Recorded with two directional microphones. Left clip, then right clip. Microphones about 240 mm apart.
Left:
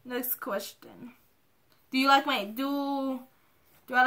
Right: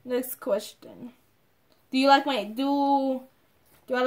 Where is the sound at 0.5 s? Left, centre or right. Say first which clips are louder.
Right 7 dB; left.